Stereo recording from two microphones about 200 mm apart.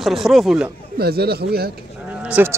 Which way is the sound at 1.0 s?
50° right (ahead or behind).